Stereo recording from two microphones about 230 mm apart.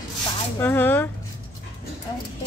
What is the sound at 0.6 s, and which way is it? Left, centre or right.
Speech, centre.